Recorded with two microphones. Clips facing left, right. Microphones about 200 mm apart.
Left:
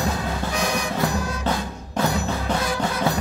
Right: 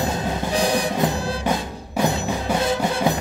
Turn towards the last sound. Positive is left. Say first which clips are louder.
# right 3 dB
turn(degrees=-20)  # may be behind; listen again after turning